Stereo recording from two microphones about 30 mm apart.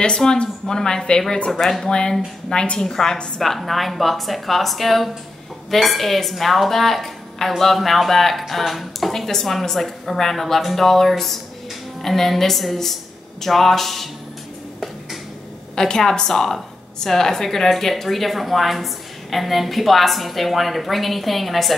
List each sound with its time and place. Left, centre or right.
0.1 s a woman's voice: left
1.5 s a woman's voice: centre
1.9 s a woman's voice: left
2.8 s a woman's voice: centre
3.3 s a woman's voice: centre
15.7 s a woman's voice: left; by 21.7 s centre